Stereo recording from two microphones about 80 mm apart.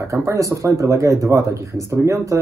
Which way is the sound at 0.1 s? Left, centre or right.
Right.